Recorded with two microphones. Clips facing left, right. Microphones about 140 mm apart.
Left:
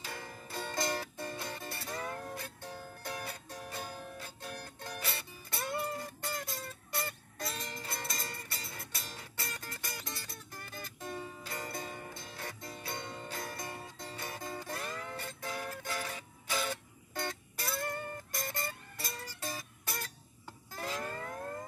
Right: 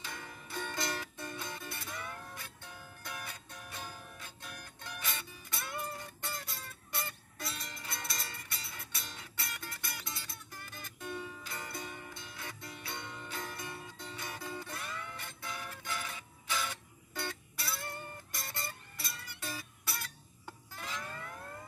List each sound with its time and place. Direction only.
0.0 s music: 35° left (ahead or behind)